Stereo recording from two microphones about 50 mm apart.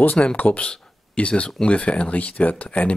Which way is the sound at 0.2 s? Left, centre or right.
Left.